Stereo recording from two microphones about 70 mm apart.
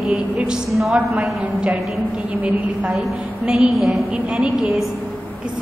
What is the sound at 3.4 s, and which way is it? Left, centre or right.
A woman's voice, centre.